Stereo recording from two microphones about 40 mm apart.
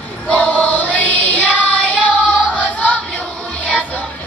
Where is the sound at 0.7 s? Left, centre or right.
Left.